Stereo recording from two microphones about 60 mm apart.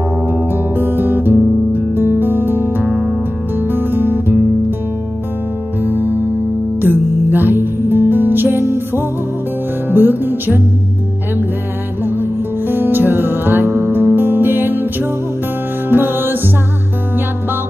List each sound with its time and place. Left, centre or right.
0.3 s music: right
5.8 s music: right
12.0 s music: right